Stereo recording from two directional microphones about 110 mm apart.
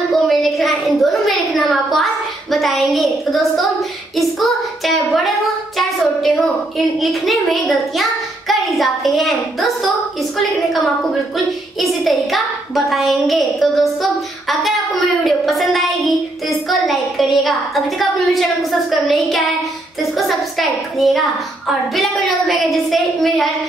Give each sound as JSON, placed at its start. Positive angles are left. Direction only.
{"t": 0.1, "sound": "a sound", "side_deg": 0}
{"t": 2.5, "sound": "a woman's voice", "side_deg": 0}
{"t": 15.2, "sound": "a woman's voice", "side_deg": 0}